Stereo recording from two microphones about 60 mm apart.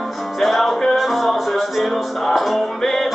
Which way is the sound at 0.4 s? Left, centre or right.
Centre.